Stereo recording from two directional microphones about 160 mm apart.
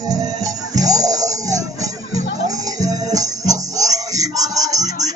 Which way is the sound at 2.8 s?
20° right (ahead or behind).